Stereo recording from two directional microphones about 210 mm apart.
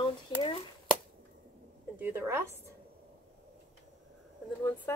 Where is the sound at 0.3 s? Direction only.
20° left (ahead or behind).